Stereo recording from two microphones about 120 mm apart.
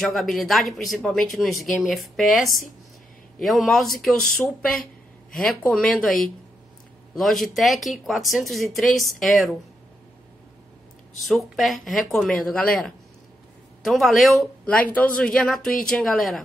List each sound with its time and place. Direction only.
0.0 s speech: centre (ahead or behind)
11.2 s speech: centre (ahead or behind)
14.7 s speech: 10° left (ahead or behind)